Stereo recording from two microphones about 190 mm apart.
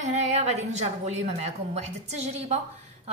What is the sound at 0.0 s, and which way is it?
A woman's voice, 35° right (ahead or behind).